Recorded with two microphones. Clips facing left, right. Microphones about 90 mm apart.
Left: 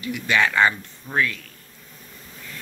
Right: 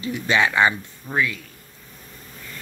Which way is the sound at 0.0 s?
30° right (ahead or behind).